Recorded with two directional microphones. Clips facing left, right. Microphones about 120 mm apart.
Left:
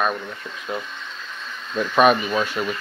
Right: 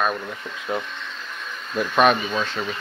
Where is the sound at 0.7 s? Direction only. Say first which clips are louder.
Right 2 dB; 20° right (ahead or behind).